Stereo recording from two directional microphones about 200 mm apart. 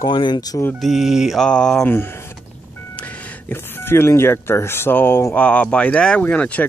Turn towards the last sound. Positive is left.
turn(degrees=5)  # may be behind; listen again after turning